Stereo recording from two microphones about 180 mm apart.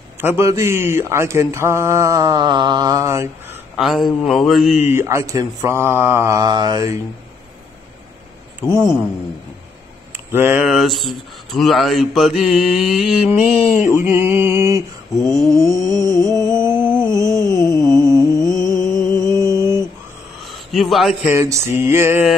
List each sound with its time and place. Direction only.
0.2 s speech: 10° right (ahead or behind)
3.8 s mantra: centre (ahead or behind)
4.8 s speech: 15° right (ahead or behind)
8.5 s a man's voice: 15° right (ahead or behind)
10.1 s a sound: 10° right (ahead or behind)
10.6 s mantra: centre (ahead or behind)
13.8 s speech: 10° right (ahead or behind)
15.2 s mantra: 20° right (ahead or behind)
16.6 s a sound: 10° right (ahead or behind)
17.5 s a sound: 15° left (ahead or behind)
17.8 s music: 15° right (ahead or behind)
20.4 s a sound: centre (ahead or behind)
21.3 s speech: 15° right (ahead or behind)